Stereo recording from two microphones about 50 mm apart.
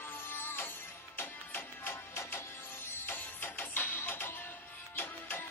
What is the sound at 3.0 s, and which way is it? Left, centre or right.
Music, left.